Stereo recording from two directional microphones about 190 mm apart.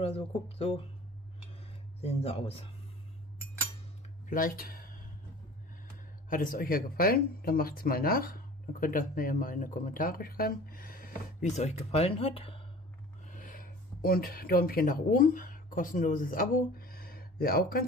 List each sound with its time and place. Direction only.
0.6 s speech: 30° left (ahead or behind)
2.0 s speech: 30° left (ahead or behind)
4.3 s speech: 45° left (ahead or behind)
6.2 s speech: 45° left (ahead or behind); by 12.6 s 30° left (ahead or behind)
13.3 s speech: 45° left (ahead or behind)